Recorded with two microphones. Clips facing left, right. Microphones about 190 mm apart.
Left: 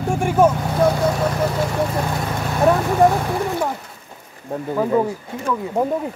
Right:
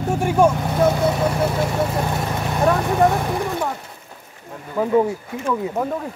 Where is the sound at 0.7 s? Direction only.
5° right (ahead or behind).